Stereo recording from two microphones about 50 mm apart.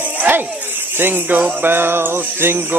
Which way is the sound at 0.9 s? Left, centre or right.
Right.